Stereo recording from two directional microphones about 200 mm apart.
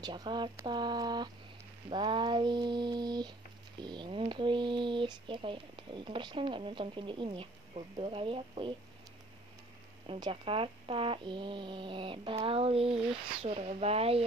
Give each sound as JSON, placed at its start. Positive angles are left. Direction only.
{"t": 0.0, "sound": "speech", "side_deg": -20}
{"t": 10.0, "sound": "speech", "side_deg": -25}